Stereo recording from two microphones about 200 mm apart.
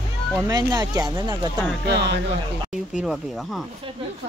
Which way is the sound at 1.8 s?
60° right (ahead or behind).